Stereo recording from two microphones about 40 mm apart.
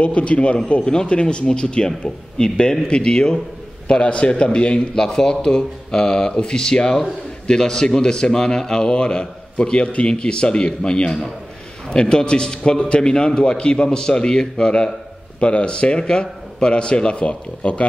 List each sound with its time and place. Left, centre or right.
0.0 s a man's voice: left